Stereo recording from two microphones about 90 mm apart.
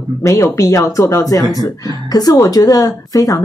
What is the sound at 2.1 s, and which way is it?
A woman's voice, 45° left (ahead or behind).